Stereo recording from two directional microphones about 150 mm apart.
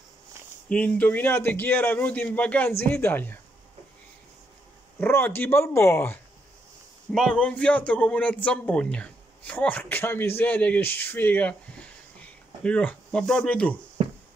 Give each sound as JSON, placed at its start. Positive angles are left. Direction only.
{"t": 0.7, "sound": "speech", "side_deg": 10}
{"t": 5.0, "sound": "speech", "side_deg": 15}
{"t": 7.1, "sound": "speech", "side_deg": 5}